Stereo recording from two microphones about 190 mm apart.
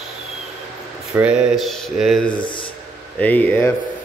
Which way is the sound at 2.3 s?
25° left (ahead or behind).